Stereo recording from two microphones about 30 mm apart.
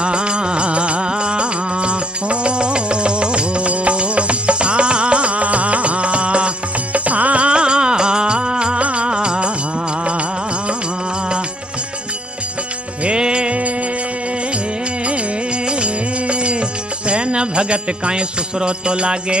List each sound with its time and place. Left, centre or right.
0.0 s music: right
6.9 s music: right
13.0 s music: right
15.8 s music: right